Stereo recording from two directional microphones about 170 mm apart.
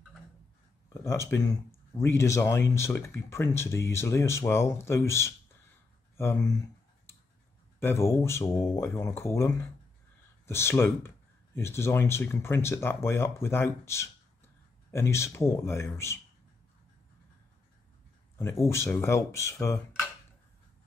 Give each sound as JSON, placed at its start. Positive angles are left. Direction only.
{"t": 1.0, "sound": "speech", "side_deg": 15}
{"t": 7.8, "sound": "speech", "side_deg": 15}
{"t": 18.4, "sound": "speech", "side_deg": 15}